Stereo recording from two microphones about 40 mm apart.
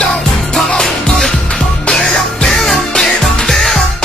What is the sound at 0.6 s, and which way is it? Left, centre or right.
Music, centre.